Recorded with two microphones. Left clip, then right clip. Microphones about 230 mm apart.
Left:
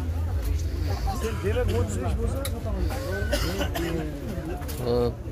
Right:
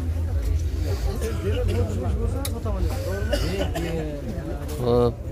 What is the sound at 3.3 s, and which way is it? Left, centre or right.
Speech, left.